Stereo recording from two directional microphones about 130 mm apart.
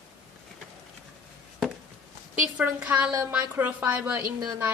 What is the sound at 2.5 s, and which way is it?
A woman's voice, 10° right (ahead or behind).